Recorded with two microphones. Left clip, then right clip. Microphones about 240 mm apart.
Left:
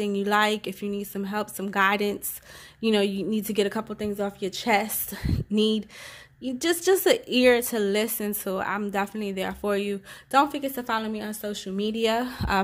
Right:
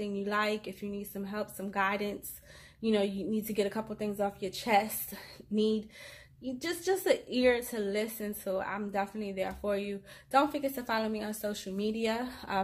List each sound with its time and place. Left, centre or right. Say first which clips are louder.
0.0 s a woman's voice: left 9 dB; left